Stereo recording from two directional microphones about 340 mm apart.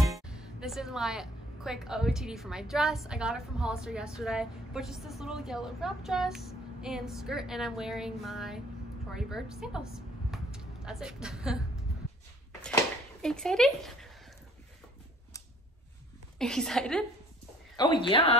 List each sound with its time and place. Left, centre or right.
0.0 s a woman's voice: centre
12.6 s a sound: centre
16.3 s speech: centre
18.0 s speech: centre